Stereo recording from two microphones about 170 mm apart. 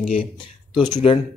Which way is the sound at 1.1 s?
30° left (ahead or behind).